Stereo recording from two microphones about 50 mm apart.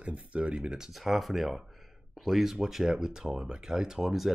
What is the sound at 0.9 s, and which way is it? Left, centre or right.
Speech, centre.